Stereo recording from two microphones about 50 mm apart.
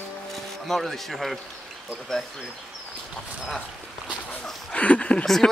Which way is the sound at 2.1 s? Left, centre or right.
Centre.